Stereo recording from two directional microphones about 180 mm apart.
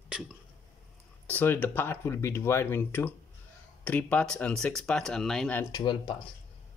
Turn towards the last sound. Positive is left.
turn(degrees=25)  # may be behind; listen again after turning